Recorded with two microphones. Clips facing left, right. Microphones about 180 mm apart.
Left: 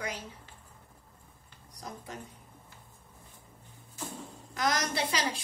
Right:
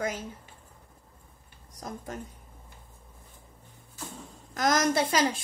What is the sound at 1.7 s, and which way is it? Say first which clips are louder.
Speech: right 5 dB; 45° right (ahead or behind).